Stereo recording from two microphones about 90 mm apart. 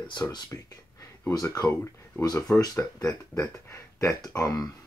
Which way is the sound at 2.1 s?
25° left (ahead or behind).